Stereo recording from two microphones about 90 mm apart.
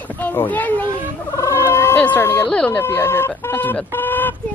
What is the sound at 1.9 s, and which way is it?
Speech, 20° left (ahead or behind).